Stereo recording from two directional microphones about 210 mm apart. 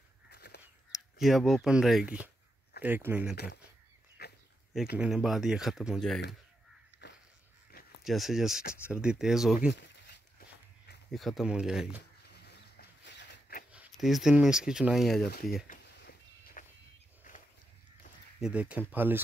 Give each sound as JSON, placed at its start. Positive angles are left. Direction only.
{"t": 0.3, "sound": "crow", "side_deg": 50}
{"t": 0.9, "sound": "speech", "side_deg": 0}
{"t": 4.2, "sound": "dog", "side_deg": 50}
{"t": 4.9, "sound": "speech", "side_deg": -5}
{"t": 7.0, "sound": "crow", "side_deg": 55}
{"t": 8.0, "sound": "speech", "side_deg": 0}
{"t": 11.1, "sound": "speech", "side_deg": 0}
{"t": 12.3, "sound": "a sound", "side_deg": 50}
{"t": 13.7, "sound": "speech", "side_deg": -5}
{"t": 15.2, "sound": "speech", "side_deg": 45}
{"t": 16.0, "sound": "a sound", "side_deg": 45}
{"t": 18.4, "sound": "speech", "side_deg": -5}